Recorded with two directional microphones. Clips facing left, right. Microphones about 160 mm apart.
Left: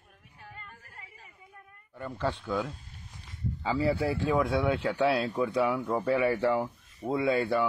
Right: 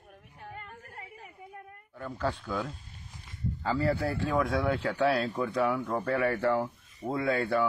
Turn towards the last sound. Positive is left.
turn(degrees=5)  # may be behind; listen again after turning